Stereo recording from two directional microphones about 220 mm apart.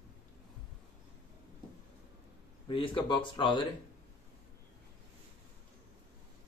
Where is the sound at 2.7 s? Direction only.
25° left (ahead or behind).